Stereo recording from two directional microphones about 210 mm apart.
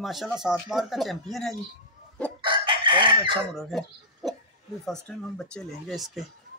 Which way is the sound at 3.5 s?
Centre (ahead or behind).